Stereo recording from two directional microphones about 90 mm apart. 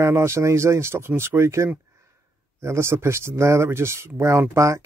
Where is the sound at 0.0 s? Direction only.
30° right (ahead or behind).